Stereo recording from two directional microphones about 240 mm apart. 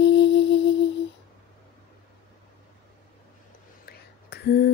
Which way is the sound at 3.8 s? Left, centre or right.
Left.